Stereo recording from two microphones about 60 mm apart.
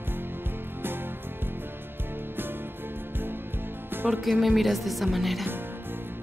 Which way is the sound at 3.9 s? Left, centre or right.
Right.